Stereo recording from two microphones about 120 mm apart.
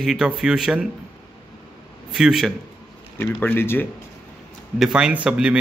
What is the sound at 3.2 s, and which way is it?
Speech, 15° left (ahead or behind).